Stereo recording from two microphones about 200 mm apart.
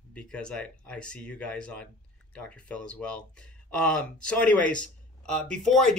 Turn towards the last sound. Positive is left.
turn(degrees=0)  # may be behind; listen again after turning